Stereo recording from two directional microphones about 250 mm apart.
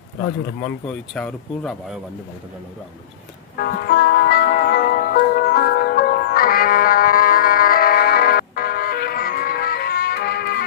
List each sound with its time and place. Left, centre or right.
0.8 s speech: centre
3.5 s music: left